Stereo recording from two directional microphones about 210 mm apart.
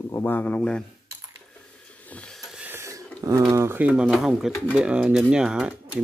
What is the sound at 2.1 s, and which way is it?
Wheeze, 5° left (ahead or behind).